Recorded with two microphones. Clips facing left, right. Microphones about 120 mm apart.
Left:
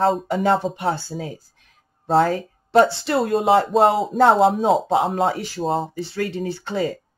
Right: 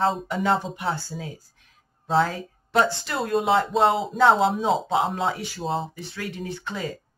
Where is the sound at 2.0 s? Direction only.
45° left (ahead or behind).